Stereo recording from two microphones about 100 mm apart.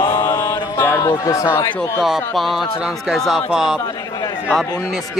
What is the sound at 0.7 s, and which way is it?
Speech, 25° left (ahead or behind).